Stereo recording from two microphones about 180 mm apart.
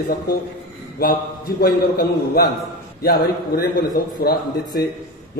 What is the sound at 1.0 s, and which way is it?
A man's voice, 60° left (ahead or behind).